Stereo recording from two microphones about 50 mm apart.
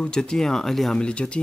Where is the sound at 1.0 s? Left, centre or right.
Left.